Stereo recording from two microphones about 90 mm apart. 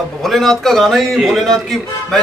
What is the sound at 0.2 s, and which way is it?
A man's voice, 5° left (ahead or behind).